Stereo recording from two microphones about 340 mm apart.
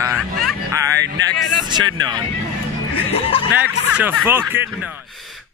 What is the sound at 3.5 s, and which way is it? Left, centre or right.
Speech, centre.